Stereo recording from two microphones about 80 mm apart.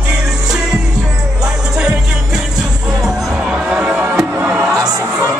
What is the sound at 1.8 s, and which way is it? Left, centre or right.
Music, centre.